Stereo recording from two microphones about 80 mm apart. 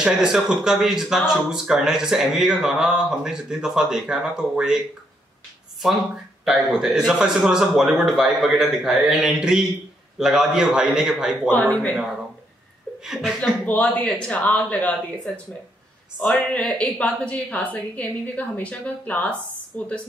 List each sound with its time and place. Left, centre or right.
0.0 s speech: centre
6.4 s speech: centre
11.4 s a woman's voice: left
13.0 s speech: centre
13.4 s a woman's voice: centre